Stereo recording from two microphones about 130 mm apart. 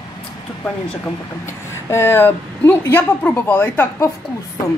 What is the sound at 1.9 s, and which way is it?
A woman's voice, 20° left (ahead or behind).